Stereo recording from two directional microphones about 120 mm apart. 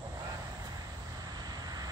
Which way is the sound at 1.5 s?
35° right (ahead or behind).